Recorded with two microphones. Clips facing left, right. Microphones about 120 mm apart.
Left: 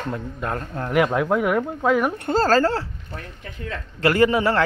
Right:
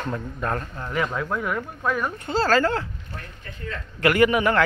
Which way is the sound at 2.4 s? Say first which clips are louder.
Left 1 dB; 35° left (ahead or behind).